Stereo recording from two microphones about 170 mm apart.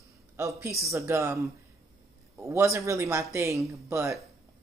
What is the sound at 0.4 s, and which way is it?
A man's voice, 15° right (ahead or behind).